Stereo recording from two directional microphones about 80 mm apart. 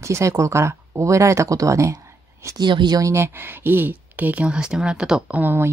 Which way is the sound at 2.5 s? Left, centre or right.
Right.